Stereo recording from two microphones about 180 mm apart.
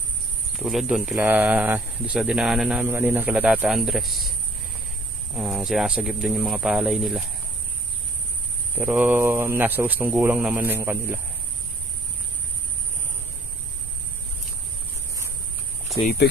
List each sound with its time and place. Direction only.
0.6 s speech: centre (ahead or behind)
5.3 s speech: centre (ahead or behind)
8.7 s a man's voice: 10° right (ahead or behind)
16.2 s speech: 65° left (ahead or behind)